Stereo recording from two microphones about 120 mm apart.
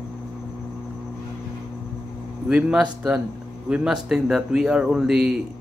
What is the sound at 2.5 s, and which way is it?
A man's voice, 10° right (ahead or behind).